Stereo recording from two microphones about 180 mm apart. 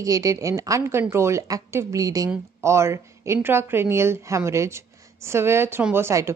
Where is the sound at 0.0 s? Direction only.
20° right (ahead or behind).